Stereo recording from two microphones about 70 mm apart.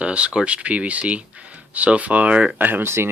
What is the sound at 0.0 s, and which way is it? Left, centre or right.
Speech, centre.